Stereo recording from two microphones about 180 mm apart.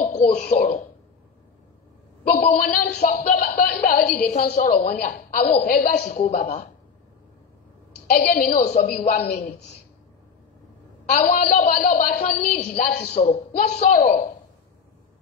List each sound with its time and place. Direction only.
0.0 s throat clearing: 35° left (ahead or behind)
0.4 s a woman's voice: 60° left (ahead or behind)
2.4 s a woman's voice: 55° left (ahead or behind)
6.1 s a man's voice: 40° left (ahead or behind)
8.1 s a woman's voice: 60° left (ahead or behind)
11.1 s a woman's voice: 60° left (ahead or behind)